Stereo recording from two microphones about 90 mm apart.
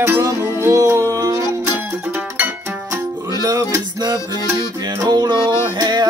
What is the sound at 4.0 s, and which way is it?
Music, 50° right (ahead or behind).